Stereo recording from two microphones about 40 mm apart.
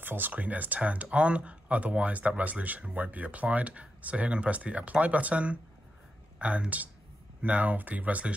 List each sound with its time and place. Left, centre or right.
0.0 s speech: right
0.3 s speech: right